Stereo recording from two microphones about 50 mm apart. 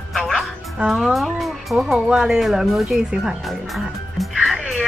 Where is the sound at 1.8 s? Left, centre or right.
Centre.